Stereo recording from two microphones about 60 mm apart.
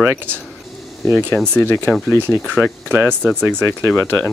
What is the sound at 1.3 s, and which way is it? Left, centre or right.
Speech, centre.